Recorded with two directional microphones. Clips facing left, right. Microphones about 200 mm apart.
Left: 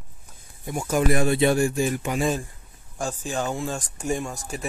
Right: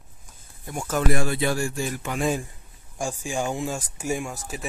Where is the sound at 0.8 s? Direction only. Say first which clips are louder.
Left 3 dB; 15° left (ahead or behind).